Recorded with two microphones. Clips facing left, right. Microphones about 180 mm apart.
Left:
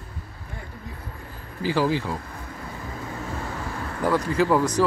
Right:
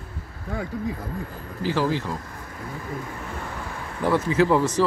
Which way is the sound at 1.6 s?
5° left (ahead or behind).